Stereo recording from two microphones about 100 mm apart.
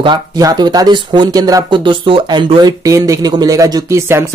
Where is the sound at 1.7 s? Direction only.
60° right (ahead or behind).